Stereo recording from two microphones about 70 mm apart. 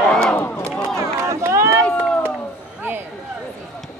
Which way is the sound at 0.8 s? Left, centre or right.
Right.